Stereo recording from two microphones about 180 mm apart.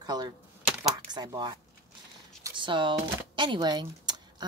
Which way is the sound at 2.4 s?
25° right (ahead or behind).